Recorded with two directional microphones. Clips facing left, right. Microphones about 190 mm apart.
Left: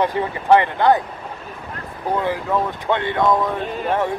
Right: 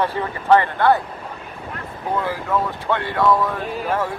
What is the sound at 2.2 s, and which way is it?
Speech, 20° left (ahead or behind).